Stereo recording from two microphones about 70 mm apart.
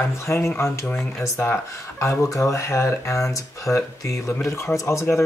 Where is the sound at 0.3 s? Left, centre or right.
Left.